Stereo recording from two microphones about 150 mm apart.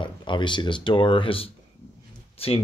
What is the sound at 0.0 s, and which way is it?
Speech, 30° left (ahead or behind).